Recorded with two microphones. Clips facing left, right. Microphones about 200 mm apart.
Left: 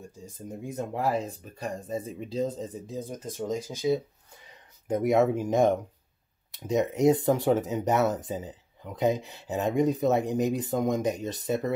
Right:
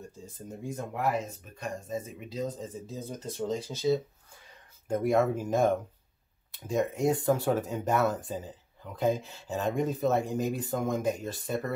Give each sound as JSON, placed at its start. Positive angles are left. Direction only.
{"t": 0.7, "sound": "speech", "side_deg": 25}
{"t": 6.9, "sound": "speech", "side_deg": 20}
{"t": 8.4, "sound": "a sound", "side_deg": 20}
{"t": 9.1, "sound": "speech", "side_deg": 20}